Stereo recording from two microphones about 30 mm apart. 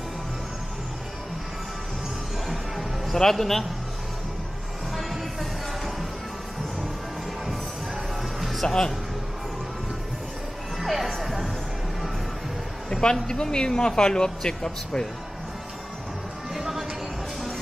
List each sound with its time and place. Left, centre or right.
3.2 s a man's voice: centre
4.9 s music: centre
8.4 s music: centre
8.6 s speech: left
10.8 s music: centre
11.1 s music: centre
13.1 s speech: left